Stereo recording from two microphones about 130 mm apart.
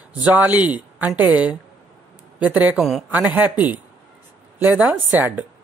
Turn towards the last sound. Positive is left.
turn(degrees=-10)  # may be behind; listen again after turning